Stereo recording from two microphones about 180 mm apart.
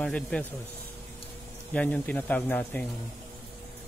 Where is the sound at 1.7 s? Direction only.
5° left (ahead or behind).